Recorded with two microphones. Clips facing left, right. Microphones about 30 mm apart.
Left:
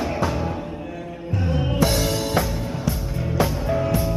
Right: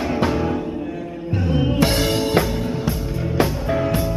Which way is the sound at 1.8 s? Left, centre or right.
Right.